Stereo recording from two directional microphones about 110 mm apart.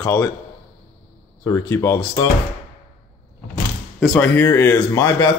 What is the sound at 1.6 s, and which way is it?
Speech, 30° left (ahead or behind).